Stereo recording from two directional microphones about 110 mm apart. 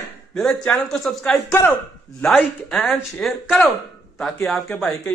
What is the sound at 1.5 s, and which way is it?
Speech, 20° left (ahead or behind).